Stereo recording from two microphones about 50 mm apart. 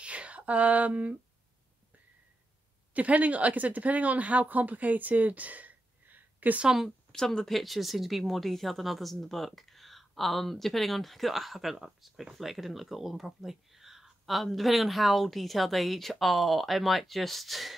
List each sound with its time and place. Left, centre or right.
0.0 s a sound: right
2.9 s speech: right
6.6 s speech: centre
7.1 s speech: centre